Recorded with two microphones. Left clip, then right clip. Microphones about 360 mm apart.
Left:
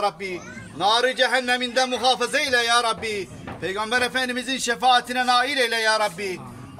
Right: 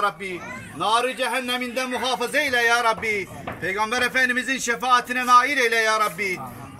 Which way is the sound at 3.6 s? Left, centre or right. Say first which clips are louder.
Even; left.